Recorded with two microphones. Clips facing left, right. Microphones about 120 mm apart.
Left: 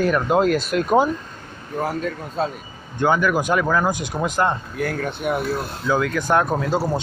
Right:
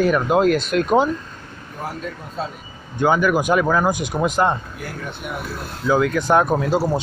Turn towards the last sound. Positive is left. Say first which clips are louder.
# right 2 dB
turn(degrees=-5)  # may be behind; listen again after turning